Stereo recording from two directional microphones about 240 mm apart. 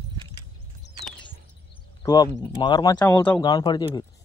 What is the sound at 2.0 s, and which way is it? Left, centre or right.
Speech, centre.